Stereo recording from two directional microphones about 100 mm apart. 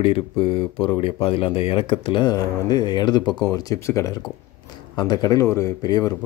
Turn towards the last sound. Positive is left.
turn(degrees=40)  # may be behind; listen again after turning